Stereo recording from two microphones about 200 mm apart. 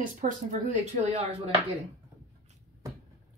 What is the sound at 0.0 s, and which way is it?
Speech, 40° right (ahead or behind).